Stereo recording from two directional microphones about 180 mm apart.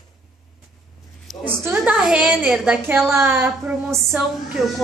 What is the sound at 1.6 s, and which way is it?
A woman's voice, 10° right (ahead or behind).